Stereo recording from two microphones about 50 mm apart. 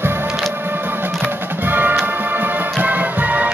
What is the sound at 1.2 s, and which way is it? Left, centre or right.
Music, right.